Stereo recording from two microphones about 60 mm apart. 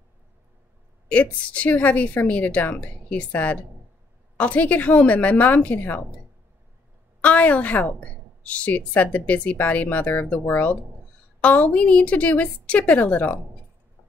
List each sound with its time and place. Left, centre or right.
1.0 s a woman's voice: left
4.4 s a woman's voice: left
7.2 s a woman's voice: left